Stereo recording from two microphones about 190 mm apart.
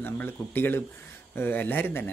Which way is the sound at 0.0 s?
10° left (ahead or behind).